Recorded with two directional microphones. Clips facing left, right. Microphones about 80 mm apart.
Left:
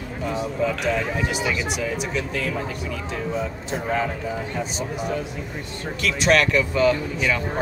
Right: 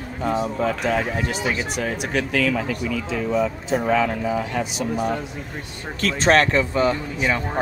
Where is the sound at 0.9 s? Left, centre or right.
Right.